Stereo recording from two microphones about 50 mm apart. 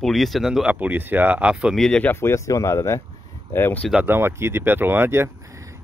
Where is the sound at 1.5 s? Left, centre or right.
Centre.